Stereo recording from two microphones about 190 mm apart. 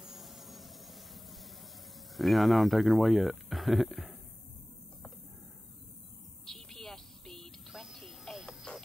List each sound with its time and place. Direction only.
0.0 s vehicle: centre (ahead or behind)
2.1 s speech: centre (ahead or behind)
6.4 s music: centre (ahead or behind)